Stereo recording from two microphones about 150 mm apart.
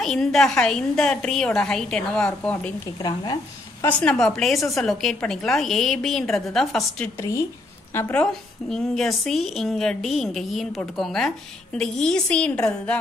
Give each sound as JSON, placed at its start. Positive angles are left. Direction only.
{"t": 0.0, "sound": "a woman's voice", "side_deg": 0}
{"t": 3.0, "sound": "speech", "side_deg": 30}
{"t": 3.8, "sound": "a woman's voice", "side_deg": 5}
{"t": 7.2, "sound": "speech", "side_deg": 20}
{"t": 8.2, "sound": "a woman's voice", "side_deg": 5}